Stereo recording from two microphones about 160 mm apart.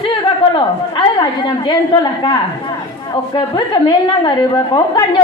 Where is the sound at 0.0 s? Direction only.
30° left (ahead or behind).